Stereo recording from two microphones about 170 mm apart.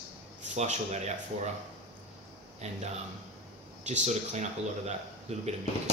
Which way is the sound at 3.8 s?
45° right (ahead or behind).